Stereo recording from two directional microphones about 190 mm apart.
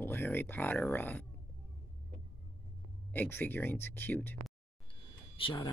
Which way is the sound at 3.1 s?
10° left (ahead or behind).